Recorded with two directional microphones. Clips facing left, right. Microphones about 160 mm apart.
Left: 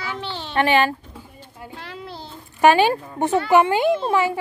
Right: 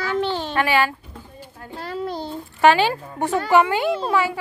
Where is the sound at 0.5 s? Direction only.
25° left (ahead or behind).